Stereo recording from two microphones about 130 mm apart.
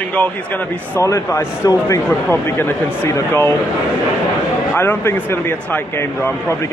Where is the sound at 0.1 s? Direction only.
10° left (ahead or behind).